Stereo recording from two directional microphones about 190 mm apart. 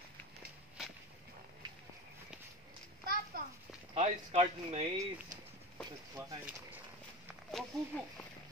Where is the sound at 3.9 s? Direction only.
35° right (ahead or behind).